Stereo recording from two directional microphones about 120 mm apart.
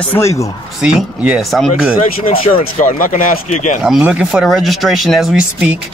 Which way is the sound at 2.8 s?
90° left.